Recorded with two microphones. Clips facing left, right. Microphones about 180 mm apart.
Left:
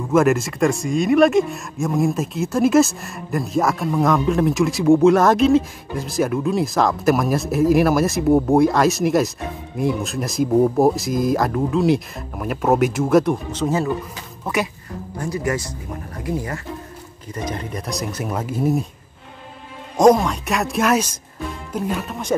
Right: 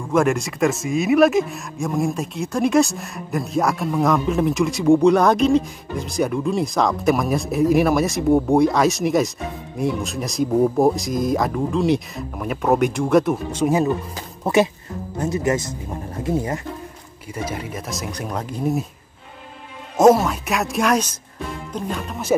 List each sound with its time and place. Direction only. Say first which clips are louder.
0.1 s speech: left 2 dB; 5° left (ahead or behind)
14.1 s speech: right 6 dB; 30° right (ahead or behind)
17.3 s speech: even; 5° right (ahead or behind)
20.0 s speech: even; 5° right (ahead or behind)